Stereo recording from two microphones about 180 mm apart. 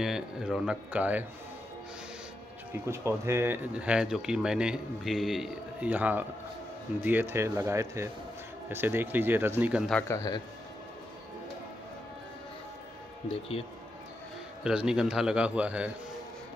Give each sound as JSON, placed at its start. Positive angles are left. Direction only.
{"t": 0.0, "sound": "speech", "side_deg": 0}
{"t": 2.9, "sound": "speech", "side_deg": -15}
{"t": 9.9, "sound": "a man's voice", "side_deg": 15}
{"t": 13.3, "sound": "speech", "side_deg": 35}
{"t": 14.6, "sound": "speech", "side_deg": -5}